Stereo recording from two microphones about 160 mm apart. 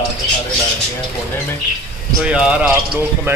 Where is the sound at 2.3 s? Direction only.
5° right (ahead or behind).